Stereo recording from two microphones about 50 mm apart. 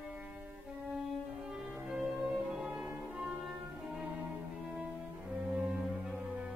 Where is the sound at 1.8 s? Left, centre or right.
Centre.